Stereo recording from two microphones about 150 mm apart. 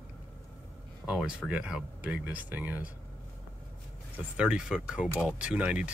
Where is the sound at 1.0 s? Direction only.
5° right (ahead or behind).